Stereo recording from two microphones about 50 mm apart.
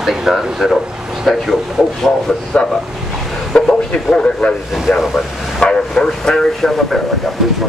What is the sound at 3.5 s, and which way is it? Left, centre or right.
Speech, left.